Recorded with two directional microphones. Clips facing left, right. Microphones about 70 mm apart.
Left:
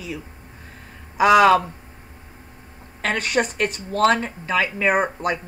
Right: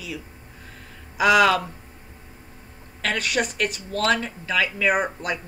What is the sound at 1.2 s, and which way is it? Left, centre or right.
Speech, left.